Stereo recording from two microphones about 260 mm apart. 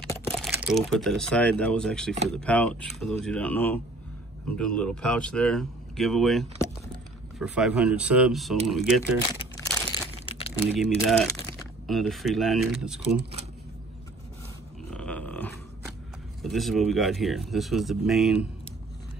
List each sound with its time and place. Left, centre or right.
0.0 s typing: centre
0.6 s speech: centre
9.2 s crumpling: centre
11.9 s speech: centre
13.0 s speech: right
14.9 s a sound: centre
16.4 s speech: centre